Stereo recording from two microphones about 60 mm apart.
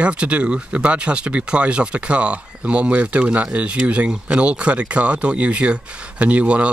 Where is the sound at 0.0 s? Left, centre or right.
Centre.